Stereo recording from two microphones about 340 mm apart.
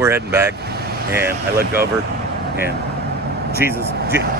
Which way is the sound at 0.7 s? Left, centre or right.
Right.